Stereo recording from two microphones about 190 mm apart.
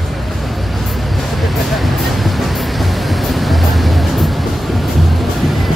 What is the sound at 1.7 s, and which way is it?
Music, centre (ahead or behind).